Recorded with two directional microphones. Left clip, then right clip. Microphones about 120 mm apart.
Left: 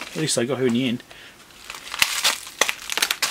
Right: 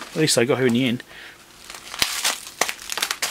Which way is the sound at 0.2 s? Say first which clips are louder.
Right 4 dB; 30° right (ahead or behind).